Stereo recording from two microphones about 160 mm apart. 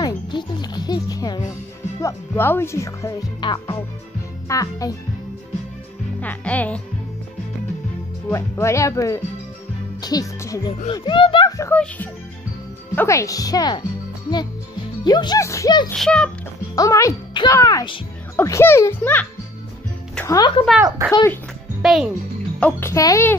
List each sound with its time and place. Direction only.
0.0 s speech: 30° left (ahead or behind)
6.2 s a child's voice: 10° left (ahead or behind)
8.3 s speech: 15° left (ahead or behind)
10.9 s speech: 30° left (ahead or behind)
12.9 s speech: 15° left (ahead or behind)
15.0 s speech: 25° left (ahead or behind)
15.9 s a child's voice: 5° left (ahead or behind)
16.7 s a child's voice: 20° left (ahead or behind)
20.2 s speech: 25° left (ahead or behind)
21.8 s a child's voice: centre (ahead or behind)
22.6 s a child's voice: 15° left (ahead or behind)